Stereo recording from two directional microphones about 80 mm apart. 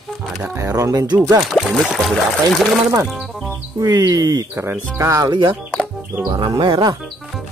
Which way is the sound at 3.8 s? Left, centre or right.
Right.